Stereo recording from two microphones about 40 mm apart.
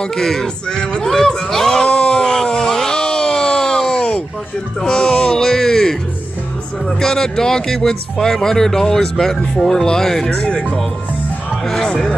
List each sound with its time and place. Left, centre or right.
0.0 s speech: centre
1.9 s a sound: centre
4.8 s speech: centre
10.4 s speech: left
11.6 s speech: centre